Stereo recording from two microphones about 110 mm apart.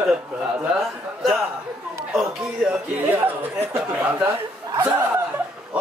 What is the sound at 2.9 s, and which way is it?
Speech, 15° right (ahead or behind).